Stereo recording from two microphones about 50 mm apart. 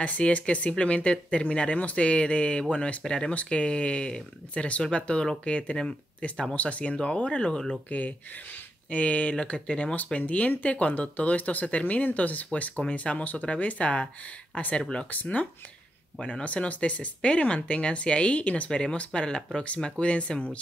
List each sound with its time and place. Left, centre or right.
0.0 s speech: left
8.9 s speech: left
15.0 s speech: left
16.2 s speech: centre
18.7 s speech: centre